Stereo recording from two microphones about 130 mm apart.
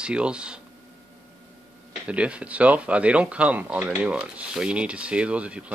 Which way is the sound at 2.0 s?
10° right (ahead or behind).